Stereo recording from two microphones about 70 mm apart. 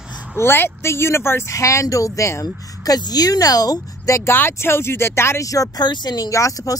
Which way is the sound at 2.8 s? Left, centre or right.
Left.